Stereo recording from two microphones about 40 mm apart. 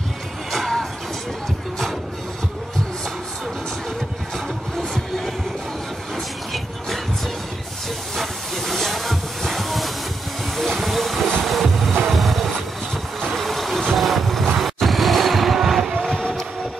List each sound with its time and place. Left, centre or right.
0.5 s music: centre
6.1 s music: centre
8.2 s hiss: centre
10.5 s vehicle: centre
11.4 s music: centre
12.1 s vehicle: centre
16.1 s vehicle: centre